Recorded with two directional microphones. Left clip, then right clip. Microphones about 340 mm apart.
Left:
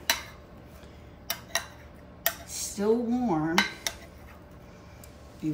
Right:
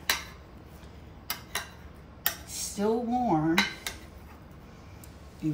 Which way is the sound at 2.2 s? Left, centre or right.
Centre.